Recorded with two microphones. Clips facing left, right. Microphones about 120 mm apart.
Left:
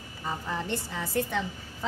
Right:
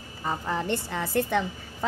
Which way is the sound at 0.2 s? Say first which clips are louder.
Right 4 dB; 55° right (ahead or behind).